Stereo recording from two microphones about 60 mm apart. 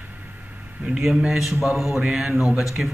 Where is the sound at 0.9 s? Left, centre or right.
Centre.